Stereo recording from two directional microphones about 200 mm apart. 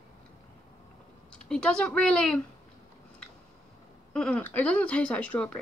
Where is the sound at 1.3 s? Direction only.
5° left (ahead or behind).